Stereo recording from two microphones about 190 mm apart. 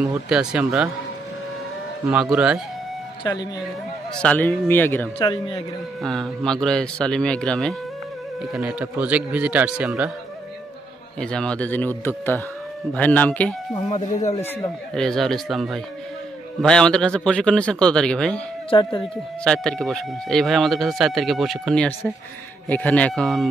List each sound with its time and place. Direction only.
0.0 s speech: 5° right (ahead or behind)
2.0 s speech: 10° right (ahead or behind)
4.2 s speech: 5° left (ahead or behind)
5.2 s a man's voice: 25° left (ahead or behind)
6.0 s speech: centre (ahead or behind)
8.5 s speech: 5° right (ahead or behind)
11.1 s speech: 5° left (ahead or behind)
13.8 s speech: 40° left (ahead or behind)
15.0 s speech: centre (ahead or behind)
18.7 s a man's voice: 25° left (ahead or behind)
19.4 s speech: 5° left (ahead or behind)